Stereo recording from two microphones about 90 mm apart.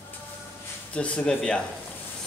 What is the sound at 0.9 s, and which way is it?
Speech, 10° left (ahead or behind).